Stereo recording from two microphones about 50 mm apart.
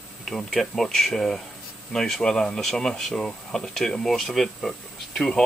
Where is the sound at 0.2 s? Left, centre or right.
Centre.